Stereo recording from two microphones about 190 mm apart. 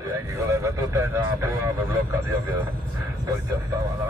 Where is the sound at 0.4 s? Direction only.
15° right (ahead or behind).